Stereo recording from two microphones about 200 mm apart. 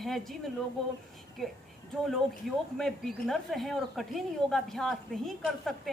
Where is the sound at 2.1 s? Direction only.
Centre (ahead or behind).